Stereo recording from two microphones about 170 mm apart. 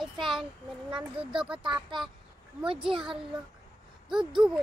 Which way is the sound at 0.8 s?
30° right (ahead or behind).